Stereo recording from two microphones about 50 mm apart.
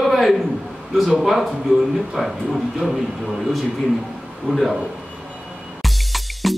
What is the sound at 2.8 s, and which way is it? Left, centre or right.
Speech, centre.